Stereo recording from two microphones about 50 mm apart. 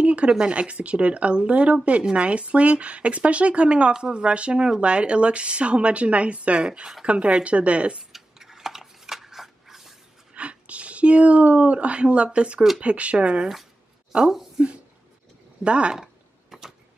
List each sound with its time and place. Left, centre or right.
0.0 s speech: right
8.1 s a sound: centre
10.3 s speech: right
14.2 s speech: centre
15.6 s speech: right
16.0 s a sound: centre